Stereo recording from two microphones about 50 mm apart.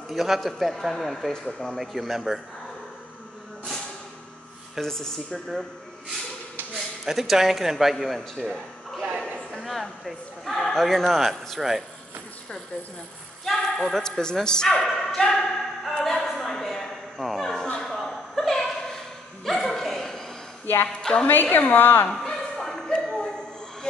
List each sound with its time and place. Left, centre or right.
0.1 s speech: centre
4.7 s speech: centre
7.1 s speech: centre
13.5 s a sound: centre
20.6 s speech: left
21.0 s a woman's voice: centre
21.3 s a woman's voice: left
22.1 s a sound: centre